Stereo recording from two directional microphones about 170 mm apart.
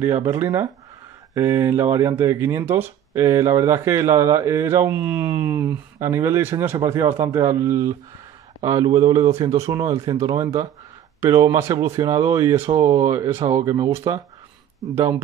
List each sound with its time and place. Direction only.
0.0 s speech: 15° right (ahead or behind)